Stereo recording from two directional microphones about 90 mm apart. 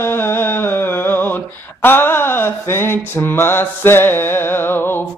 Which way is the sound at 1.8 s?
25° left (ahead or behind).